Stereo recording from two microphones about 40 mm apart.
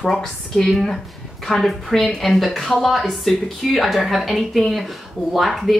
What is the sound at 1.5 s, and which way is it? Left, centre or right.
A woman's voice, centre.